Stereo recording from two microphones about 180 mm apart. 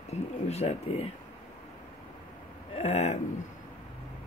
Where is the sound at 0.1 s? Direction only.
35° left (ahead or behind).